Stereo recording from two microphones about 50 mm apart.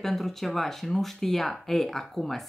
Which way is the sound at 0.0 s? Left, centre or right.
Centre.